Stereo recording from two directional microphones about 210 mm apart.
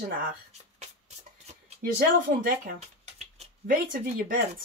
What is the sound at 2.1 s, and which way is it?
Speech, 40° right (ahead or behind).